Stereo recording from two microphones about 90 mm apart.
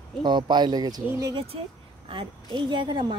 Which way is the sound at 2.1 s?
65° right (ahead or behind).